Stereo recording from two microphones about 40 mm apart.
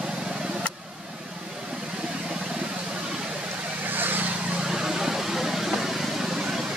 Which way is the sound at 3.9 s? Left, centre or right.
Right.